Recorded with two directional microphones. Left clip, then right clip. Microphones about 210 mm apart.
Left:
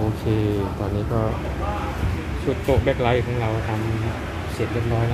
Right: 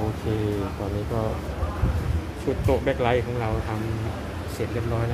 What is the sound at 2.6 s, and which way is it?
Speech, centre (ahead or behind).